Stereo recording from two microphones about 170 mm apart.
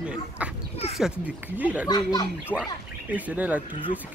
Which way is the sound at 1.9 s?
25° left (ahead or behind).